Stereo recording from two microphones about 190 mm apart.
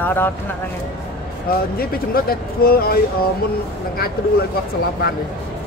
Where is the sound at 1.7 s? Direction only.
50° left (ahead or behind).